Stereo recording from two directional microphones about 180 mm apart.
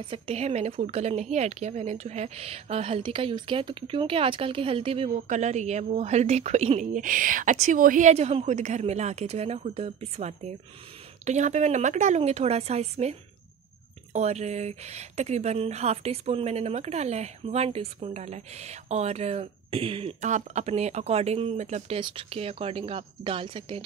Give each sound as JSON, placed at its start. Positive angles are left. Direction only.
{"t": 0.0, "sound": "speech", "side_deg": -30}
{"t": 14.1, "sound": "speech", "side_deg": -40}